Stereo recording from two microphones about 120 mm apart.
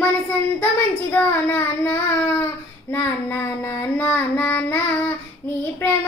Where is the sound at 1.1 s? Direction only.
15° left (ahead or behind).